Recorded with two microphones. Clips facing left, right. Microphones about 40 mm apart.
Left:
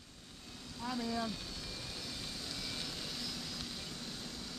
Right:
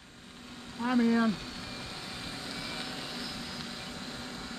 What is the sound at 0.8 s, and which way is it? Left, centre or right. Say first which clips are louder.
Speech: right 12 dB; right.